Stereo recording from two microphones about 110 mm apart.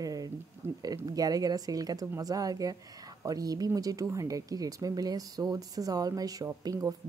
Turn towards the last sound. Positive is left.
turn(degrees=-30)  # may be behind; listen again after turning